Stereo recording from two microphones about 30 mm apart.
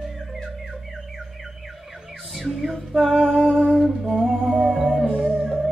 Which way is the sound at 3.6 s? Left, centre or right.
Right.